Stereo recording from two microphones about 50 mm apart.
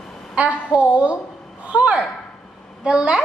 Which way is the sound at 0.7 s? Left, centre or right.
Right.